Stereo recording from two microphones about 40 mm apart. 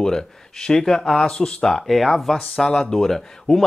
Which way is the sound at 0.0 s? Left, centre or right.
Centre.